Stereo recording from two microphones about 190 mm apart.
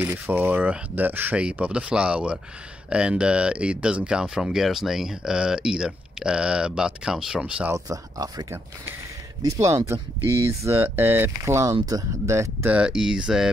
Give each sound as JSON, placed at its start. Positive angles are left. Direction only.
{"t": 0.0, "sound": "speech", "side_deg": -10}
{"t": 7.7, "sound": "speech", "side_deg": -20}